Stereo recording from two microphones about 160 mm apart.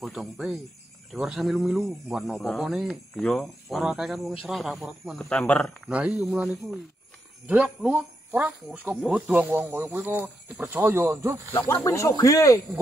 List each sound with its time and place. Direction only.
0.0 s speech: centre (ahead or behind)
5.9 s speech: 5° right (ahead or behind)
11.5 s speech: 15° left (ahead or behind)